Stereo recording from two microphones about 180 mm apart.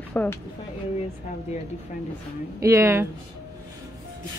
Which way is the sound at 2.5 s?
15° right (ahead or behind).